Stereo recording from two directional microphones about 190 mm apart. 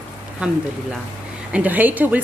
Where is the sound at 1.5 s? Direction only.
10° right (ahead or behind).